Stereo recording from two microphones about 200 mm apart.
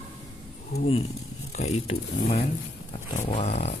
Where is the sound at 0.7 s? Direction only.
50° left (ahead or behind).